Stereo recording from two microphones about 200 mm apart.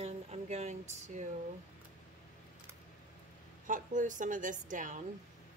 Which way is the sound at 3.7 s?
40° right (ahead or behind).